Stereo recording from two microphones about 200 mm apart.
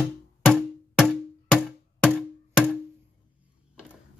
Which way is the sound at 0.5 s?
Centre (ahead or behind).